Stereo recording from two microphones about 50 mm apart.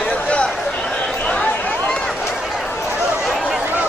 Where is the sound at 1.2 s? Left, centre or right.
Left.